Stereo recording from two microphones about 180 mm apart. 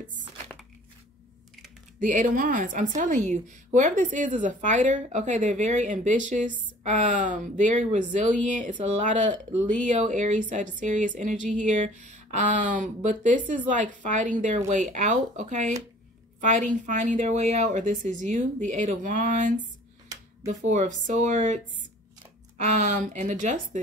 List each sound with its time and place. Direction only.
2.0 s speech: 45° right (ahead or behind)
22.6 s speech: 40° right (ahead or behind)